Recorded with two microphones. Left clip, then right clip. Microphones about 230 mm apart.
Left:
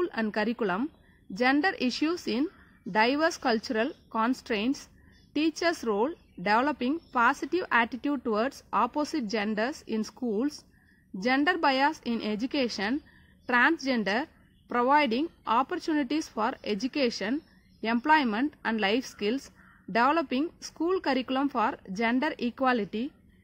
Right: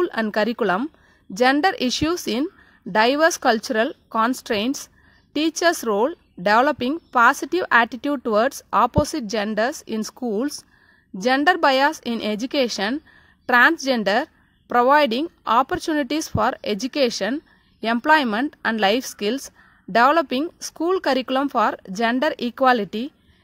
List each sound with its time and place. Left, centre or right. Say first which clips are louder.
0.0 s a woman's voice: right 8 dB; right